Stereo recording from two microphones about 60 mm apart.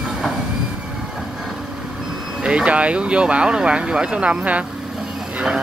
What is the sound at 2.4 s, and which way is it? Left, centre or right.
Speech, centre.